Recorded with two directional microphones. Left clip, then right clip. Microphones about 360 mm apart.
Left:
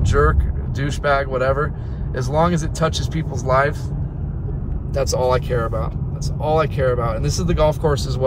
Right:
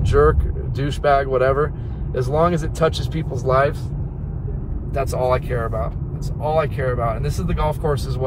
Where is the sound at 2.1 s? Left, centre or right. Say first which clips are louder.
Right 1 dB; centre.